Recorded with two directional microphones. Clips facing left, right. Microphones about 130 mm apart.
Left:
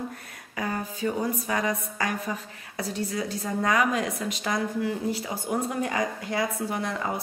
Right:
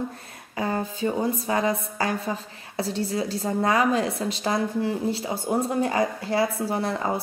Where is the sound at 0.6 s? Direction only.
30° right (ahead or behind).